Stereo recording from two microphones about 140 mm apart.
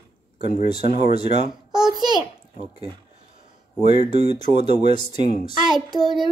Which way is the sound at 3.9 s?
50° right (ahead or behind).